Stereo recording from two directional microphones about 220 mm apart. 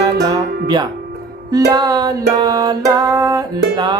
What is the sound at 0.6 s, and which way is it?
Speech, 20° right (ahead or behind).